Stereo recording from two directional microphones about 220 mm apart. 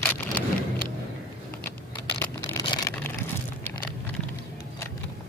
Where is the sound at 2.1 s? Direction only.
15° left (ahead or behind).